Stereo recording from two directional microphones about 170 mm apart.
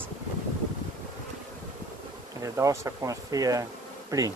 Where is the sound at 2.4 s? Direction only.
20° right (ahead or behind).